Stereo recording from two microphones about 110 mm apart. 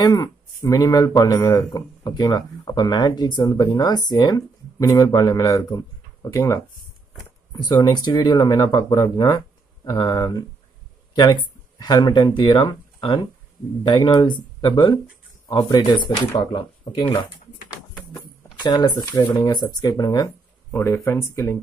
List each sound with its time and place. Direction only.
0.0 s speech: 35° left (ahead or behind)
14.6 s speech: 40° left (ahead or behind)
18.1 s speech: 40° left (ahead or behind)
20.7 s speech: 25° left (ahead or behind)